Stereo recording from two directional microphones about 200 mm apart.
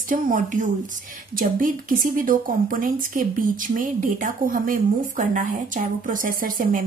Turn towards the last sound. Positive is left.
turn(degrees=-45)  # may be behind; listen again after turning